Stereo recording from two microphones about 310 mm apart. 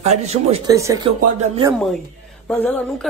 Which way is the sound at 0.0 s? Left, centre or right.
Right.